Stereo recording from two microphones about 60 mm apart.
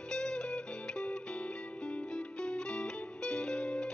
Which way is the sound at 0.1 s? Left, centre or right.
Centre.